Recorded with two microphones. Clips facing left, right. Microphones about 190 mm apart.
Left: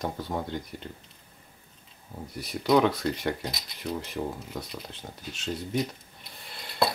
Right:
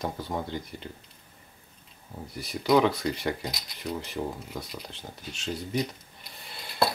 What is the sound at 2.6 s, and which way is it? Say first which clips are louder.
Speech: even; centre (ahead or behind).